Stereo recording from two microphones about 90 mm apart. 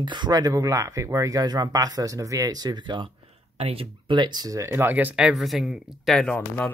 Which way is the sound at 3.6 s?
90° right.